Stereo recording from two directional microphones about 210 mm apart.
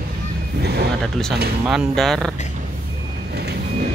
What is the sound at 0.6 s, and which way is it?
Speech, 50° right (ahead or behind).